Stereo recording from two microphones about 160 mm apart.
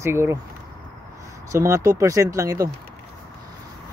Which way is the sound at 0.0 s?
15° right (ahead or behind).